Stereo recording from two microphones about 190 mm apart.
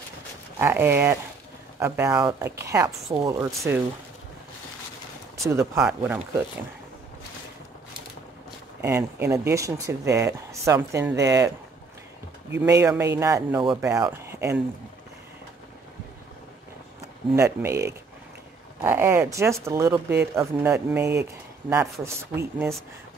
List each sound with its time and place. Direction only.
0.6 s speech: 10° right (ahead or behind)
5.4 s speech: 15° right (ahead or behind)
8.8 s speech: 15° right (ahead or behind)
12.5 s speech: 15° right (ahead or behind)
17.4 s speech: 15° right (ahead or behind)